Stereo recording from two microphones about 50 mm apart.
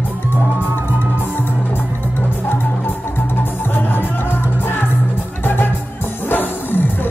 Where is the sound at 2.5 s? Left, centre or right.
Left.